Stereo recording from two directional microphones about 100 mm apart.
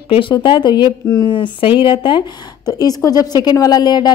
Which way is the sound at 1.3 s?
55° left (ahead or behind).